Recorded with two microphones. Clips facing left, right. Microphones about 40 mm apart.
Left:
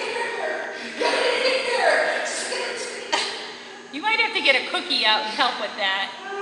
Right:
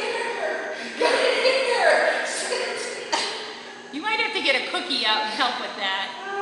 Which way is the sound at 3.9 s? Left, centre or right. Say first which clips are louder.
Left 3 dB; left.